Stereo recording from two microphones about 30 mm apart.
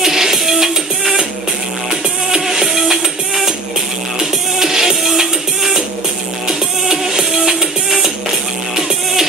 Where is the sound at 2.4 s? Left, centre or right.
Centre.